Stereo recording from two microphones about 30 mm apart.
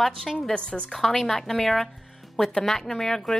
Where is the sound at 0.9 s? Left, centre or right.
Centre.